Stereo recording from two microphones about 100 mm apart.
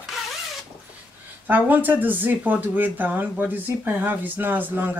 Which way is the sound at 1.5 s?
20° right (ahead or behind).